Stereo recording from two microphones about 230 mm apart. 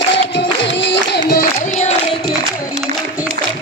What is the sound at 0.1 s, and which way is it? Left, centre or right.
Music, left.